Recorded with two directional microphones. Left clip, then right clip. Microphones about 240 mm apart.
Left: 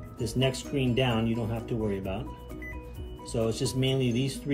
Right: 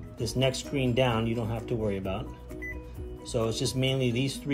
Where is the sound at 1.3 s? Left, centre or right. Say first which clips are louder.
Right 1 dB; right.